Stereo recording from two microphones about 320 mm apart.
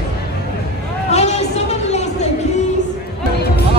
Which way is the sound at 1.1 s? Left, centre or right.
Left.